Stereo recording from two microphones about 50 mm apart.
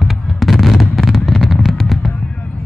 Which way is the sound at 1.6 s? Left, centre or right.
Centre.